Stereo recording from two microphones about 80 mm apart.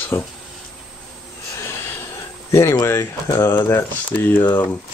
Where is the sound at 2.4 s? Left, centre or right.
Left.